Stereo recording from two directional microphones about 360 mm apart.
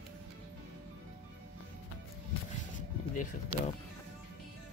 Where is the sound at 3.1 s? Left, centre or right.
Centre.